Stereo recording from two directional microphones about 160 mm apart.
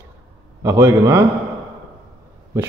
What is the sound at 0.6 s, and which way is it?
Speech, 20° right (ahead or behind).